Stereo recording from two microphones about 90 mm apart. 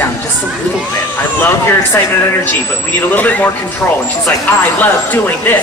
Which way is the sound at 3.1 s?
20° left (ahead or behind).